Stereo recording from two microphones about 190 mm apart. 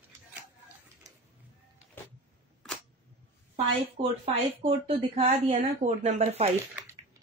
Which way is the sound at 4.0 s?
30° right (ahead or behind).